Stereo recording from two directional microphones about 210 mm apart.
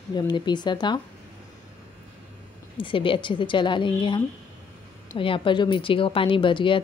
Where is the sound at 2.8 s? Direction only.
25° left (ahead or behind).